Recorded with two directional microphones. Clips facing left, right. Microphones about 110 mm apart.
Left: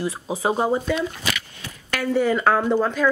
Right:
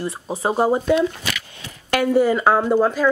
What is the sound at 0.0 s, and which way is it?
Speech, centre (ahead or behind).